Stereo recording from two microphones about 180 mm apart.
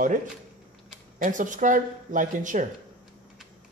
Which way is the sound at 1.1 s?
45° right (ahead or behind).